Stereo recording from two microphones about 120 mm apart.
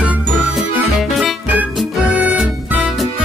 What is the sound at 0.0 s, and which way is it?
Jingle, 5° right (ahead or behind).